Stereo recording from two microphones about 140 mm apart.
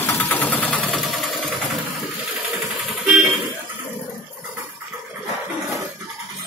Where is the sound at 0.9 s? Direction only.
Centre (ahead or behind).